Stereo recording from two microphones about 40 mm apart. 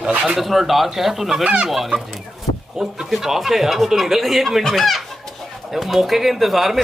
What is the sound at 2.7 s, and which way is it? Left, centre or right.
Speech, centre.